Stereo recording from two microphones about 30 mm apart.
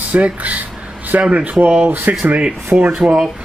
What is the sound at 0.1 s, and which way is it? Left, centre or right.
Speech, right.